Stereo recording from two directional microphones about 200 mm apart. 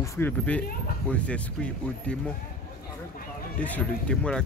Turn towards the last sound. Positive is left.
turn(degrees=5)  # may be behind; listen again after turning